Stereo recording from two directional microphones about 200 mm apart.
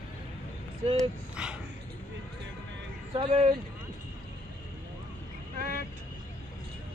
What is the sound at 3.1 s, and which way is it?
Speech, 30° right (ahead or behind).